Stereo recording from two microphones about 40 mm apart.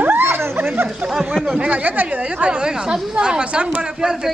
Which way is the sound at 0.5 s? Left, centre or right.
Right.